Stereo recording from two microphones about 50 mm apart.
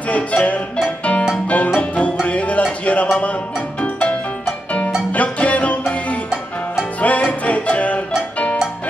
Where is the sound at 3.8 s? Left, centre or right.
Left.